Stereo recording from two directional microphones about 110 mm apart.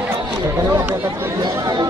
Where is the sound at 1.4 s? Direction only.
40° right (ahead or behind).